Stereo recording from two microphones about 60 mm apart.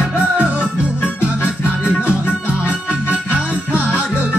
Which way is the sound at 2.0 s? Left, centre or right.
Left.